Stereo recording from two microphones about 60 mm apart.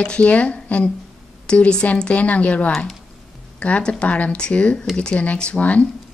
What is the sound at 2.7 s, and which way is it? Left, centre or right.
Speech, centre.